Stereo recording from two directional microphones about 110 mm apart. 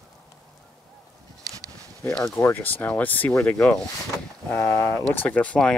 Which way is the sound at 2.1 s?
5° left (ahead or behind).